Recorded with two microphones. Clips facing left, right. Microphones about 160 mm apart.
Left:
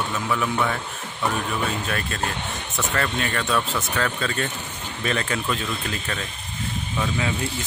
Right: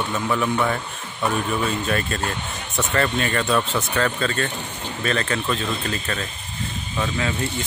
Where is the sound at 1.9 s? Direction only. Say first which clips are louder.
Right 3 dB; centre (ahead or behind).